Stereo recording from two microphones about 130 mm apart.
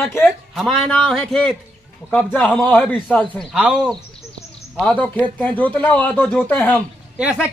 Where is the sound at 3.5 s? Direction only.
5° right (ahead or behind).